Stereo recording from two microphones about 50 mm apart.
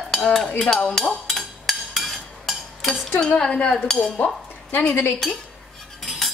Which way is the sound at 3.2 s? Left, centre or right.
Centre.